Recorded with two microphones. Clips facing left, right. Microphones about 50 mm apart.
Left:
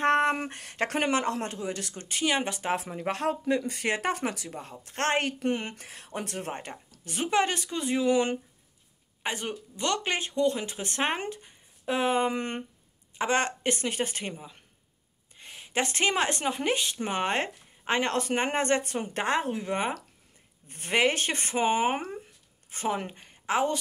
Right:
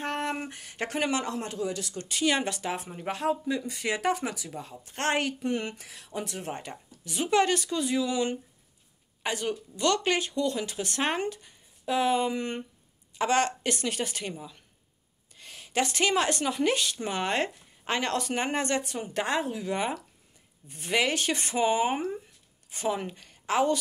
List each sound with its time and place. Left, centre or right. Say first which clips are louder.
0.4 s speech: left 3 dB; left
1.0 s speech: left 1 dB; left
1.6 s speech: right 2 dB; left
2.2 s speech: right 1 dB; centre
2.7 s speech: left 4 dB; left
7.2 s speech: right 2 dB; centre
7.8 s speech: left 7 dB; left
9.2 s speech: right 2 dB; left
12.3 s speech: even; left
13.2 s speech: right 1 dB; left
23.1 s a woman's voice: right 1 dB; left